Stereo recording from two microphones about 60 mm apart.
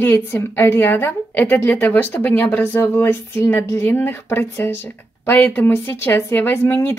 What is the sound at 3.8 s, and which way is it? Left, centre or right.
A woman's voice, left.